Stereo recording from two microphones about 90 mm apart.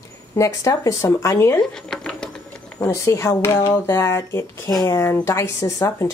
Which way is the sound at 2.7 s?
35° left (ahead or behind).